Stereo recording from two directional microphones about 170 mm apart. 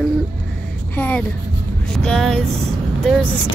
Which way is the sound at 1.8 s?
5° left (ahead or behind).